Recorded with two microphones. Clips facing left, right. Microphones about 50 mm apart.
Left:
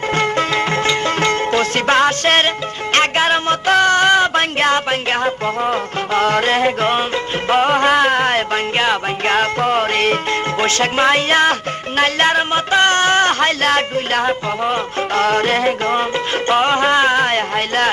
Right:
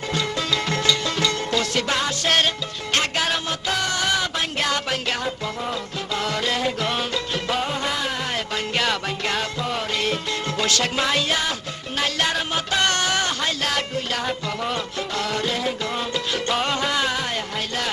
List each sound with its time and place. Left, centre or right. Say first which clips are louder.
0.1 s music: left 7 dB; left
8.7 s music: left 5 dB; left
15.2 s music: left 10 dB; left
16.4 s music: left 11 dB; left